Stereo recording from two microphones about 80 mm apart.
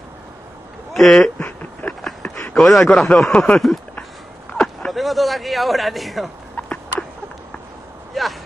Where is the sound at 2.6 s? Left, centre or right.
Centre.